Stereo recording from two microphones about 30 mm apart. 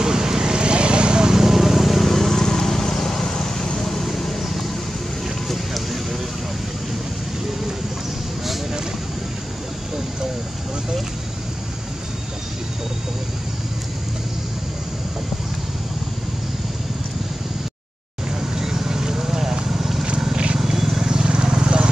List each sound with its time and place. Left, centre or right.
0.0 s vehicle: right
1.3 s vehicle: centre
18.3 s vehicle: centre
20.5 s wild animals: centre
21.1 s vehicle: right